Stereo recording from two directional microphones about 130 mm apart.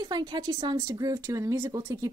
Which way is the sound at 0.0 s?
30° right (ahead or behind).